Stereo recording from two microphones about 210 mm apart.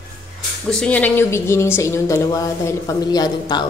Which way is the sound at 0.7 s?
5° left (ahead or behind).